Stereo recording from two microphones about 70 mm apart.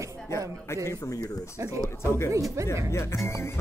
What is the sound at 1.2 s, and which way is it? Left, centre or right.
Speech, left.